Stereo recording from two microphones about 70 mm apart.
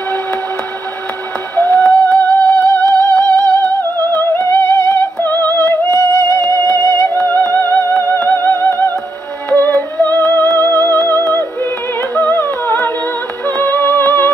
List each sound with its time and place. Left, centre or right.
1.6 s music: left
5.9 s music: left
7.2 s music: left
12.2 s humming: left
13.6 s music: left